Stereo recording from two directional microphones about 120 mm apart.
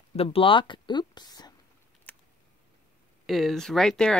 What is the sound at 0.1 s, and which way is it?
Speech, 55° left (ahead or behind).